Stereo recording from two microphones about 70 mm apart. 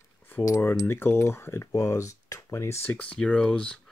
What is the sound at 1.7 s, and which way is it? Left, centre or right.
Speech, left.